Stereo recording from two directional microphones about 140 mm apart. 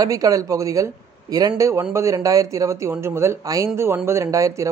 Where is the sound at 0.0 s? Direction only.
25° right (ahead or behind).